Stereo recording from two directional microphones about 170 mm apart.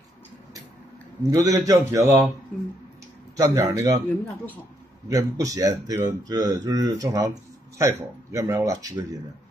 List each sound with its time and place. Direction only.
1.3 s speech: 20° right (ahead or behind)
3.3 s speech: 20° right (ahead or behind)
5.0 s speech: 20° right (ahead or behind)